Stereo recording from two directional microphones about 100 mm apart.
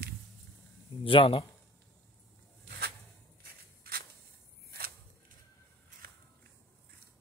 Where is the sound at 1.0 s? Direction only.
60° left (ahead or behind).